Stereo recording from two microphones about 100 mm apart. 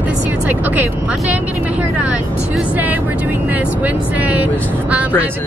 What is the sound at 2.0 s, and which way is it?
Speech, 15° right (ahead or behind).